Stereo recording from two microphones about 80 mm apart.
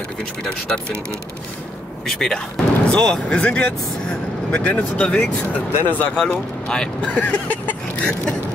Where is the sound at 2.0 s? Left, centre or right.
Centre; by 6.1 s left.